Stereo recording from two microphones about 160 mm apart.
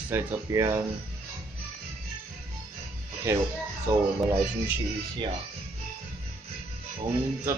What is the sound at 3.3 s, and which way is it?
Speech, 15° right (ahead or behind).